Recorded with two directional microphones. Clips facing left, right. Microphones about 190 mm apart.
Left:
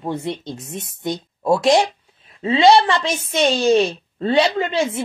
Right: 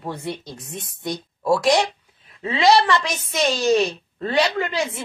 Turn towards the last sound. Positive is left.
turn(degrees=25)  # may be behind; listen again after turning